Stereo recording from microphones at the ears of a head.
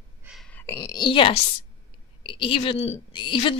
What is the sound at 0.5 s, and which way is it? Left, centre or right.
A woman's voice, left.